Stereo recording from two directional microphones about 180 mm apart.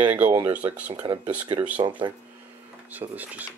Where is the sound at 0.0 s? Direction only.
10° right (ahead or behind).